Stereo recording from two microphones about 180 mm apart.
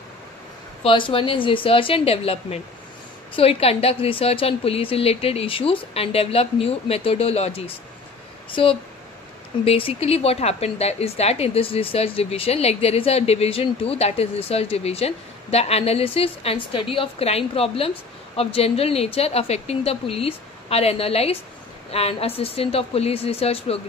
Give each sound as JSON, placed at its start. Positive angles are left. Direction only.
{"t": 0.8, "sound": "a woman's voice", "side_deg": 30}